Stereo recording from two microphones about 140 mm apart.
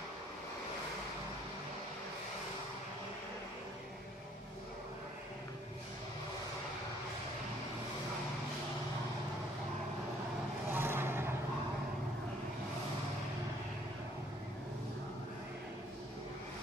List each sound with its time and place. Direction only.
10.7 s vehicle: 15° right (ahead or behind)